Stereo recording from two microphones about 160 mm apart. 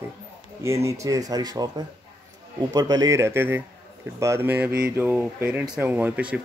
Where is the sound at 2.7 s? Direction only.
25° right (ahead or behind).